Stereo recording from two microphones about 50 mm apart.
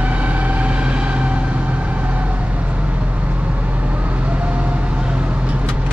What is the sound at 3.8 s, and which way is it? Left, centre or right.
Vehicle, right.